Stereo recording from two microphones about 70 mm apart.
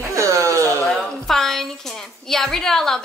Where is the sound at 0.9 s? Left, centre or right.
Centre.